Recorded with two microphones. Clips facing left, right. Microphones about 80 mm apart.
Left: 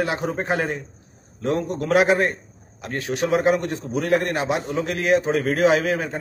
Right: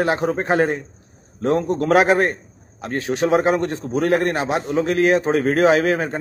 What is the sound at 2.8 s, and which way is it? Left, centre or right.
A man's voice, right.